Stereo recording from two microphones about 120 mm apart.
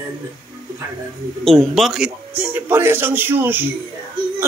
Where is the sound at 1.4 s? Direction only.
Centre (ahead or behind).